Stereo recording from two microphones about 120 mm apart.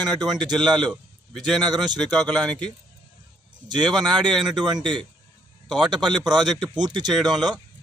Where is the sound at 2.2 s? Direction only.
5° left (ahead or behind).